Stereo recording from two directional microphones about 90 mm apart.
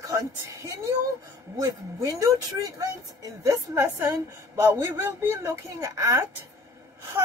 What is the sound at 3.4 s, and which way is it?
A woman's voice, 35° right (ahead or behind).